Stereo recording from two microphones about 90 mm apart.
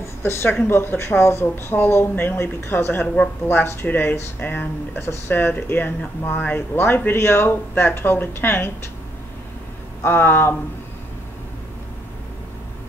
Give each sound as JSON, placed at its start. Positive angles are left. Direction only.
{"t": 0.2, "sound": "speech", "side_deg": 25}
{"t": 10.0, "sound": "speech", "side_deg": 25}